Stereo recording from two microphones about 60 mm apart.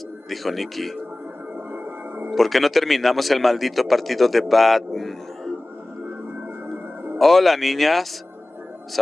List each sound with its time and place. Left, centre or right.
0.3 s speech: centre
1.7 s music: right
2.3 s a man's voice: centre
7.2 s speech: centre